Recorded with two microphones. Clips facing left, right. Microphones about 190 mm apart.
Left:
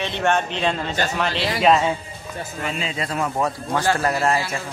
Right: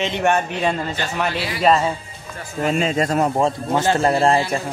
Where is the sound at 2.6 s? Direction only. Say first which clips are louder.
Right 9 dB; 45° right (ahead or behind).